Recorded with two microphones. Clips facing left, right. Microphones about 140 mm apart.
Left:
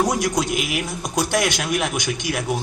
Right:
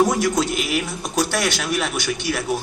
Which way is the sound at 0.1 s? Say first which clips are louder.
Right 1 dB; 15° left (ahead or behind).